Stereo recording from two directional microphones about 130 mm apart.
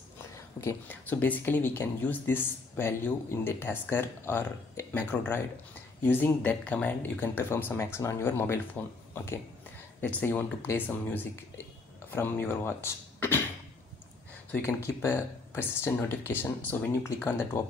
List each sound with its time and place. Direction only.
0.6 s speech: 15° left (ahead or behind)
14.5 s speech: 20° left (ahead or behind)